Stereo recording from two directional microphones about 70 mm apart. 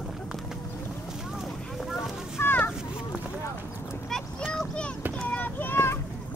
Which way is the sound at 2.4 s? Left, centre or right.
Left.